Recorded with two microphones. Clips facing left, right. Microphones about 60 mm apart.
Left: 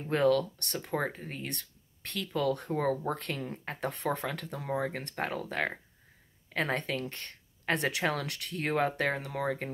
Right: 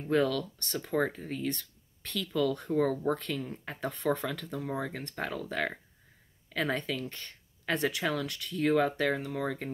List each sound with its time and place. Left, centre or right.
0.1 s speech: left
0.8 s speech: left